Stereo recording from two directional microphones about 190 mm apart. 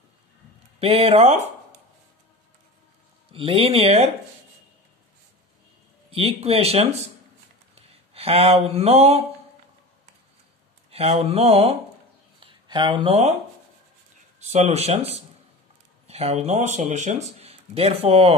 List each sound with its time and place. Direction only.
0.7 s speech: 30° right (ahead or behind)
3.3 s speech: 30° right (ahead or behind)
6.0 s speech: 30° right (ahead or behind)
10.9 s speech: 30° right (ahead or behind)
14.4 s speech: 35° right (ahead or behind)